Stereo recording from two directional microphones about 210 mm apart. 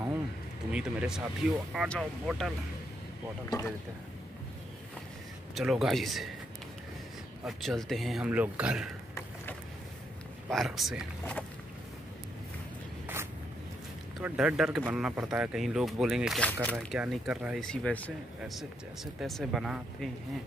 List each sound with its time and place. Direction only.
0.7 s speech: 5° right (ahead or behind)
3.5 s speech: 15° left (ahead or behind)
5.5 s speech: centre (ahead or behind)
7.4 s speech: centre (ahead or behind)
10.5 s speech: centre (ahead or behind)
14.2 s speech: 5° right (ahead or behind)